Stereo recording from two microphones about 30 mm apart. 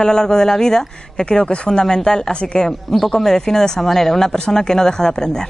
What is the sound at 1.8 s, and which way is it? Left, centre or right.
A woman's voice, left.